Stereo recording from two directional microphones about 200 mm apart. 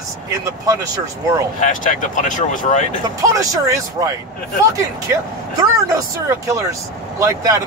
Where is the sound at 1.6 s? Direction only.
40° left (ahead or behind).